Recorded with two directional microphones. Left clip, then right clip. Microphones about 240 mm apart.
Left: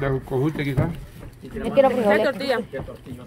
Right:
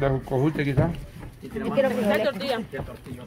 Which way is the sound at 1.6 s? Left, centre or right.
Left.